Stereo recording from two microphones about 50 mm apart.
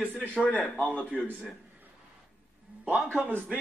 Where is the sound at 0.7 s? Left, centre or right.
Left.